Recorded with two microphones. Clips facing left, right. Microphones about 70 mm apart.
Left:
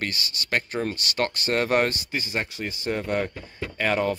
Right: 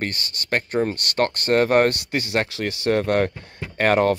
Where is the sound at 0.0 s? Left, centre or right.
Right.